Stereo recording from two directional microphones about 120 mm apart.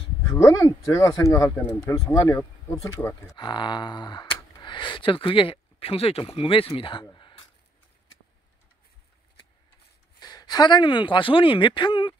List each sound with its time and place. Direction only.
0.3 s speech: 25° left (ahead or behind)
3.3 s speech: 40° left (ahead or behind)
7.2 s a sound: 40° left (ahead or behind)
10.2 s speech: 35° left (ahead or behind)